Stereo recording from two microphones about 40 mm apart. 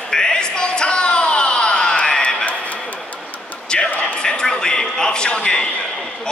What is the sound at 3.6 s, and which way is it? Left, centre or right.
Music, left.